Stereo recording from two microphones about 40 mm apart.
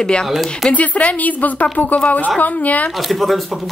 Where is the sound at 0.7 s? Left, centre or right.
Left.